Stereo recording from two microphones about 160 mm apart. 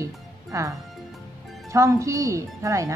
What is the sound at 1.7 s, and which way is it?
A woman's voice, 20° right (ahead or behind).